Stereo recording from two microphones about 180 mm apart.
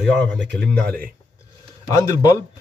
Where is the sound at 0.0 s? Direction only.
5° left (ahead or behind).